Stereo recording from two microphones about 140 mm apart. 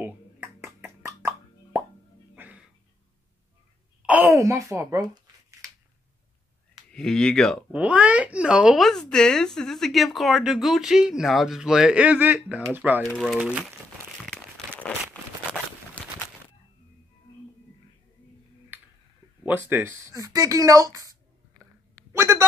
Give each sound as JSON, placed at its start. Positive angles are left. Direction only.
{"t": 0.0, "sound": "plop", "side_deg": -15}
{"t": 2.3, "sound": "music", "side_deg": -10}
{"t": 4.0, "sound": "a sound", "side_deg": -10}
{"t": 4.4, "sound": "speech", "side_deg": -20}
{"t": 6.9, "sound": "speech", "side_deg": 5}
{"t": 7.7, "sound": "speech", "side_deg": -10}
{"t": 13.0, "sound": "speech", "side_deg": 0}
{"t": 15.2, "sound": "a sound", "side_deg": 10}
{"t": 16.0, "sound": "bird", "side_deg": 10}
{"t": 19.4, "sound": "speech", "side_deg": -15}
{"t": 22.1, "sound": "a sound", "side_deg": -20}